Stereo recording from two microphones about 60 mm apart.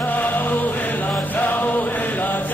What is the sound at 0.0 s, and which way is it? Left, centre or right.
Music, left.